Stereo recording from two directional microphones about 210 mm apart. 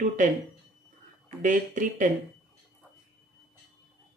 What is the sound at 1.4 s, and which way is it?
Speech, 40° right (ahead or behind).